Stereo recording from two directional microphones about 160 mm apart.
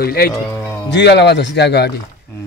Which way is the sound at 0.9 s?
90° left.